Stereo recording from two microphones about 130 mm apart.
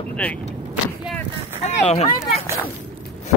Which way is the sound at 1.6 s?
50° left (ahead or behind).